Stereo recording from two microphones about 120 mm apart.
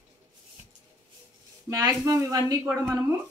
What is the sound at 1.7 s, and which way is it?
Speech, 30° right (ahead or behind).